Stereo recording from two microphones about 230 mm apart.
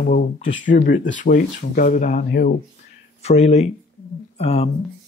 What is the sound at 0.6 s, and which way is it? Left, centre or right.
Speech, left.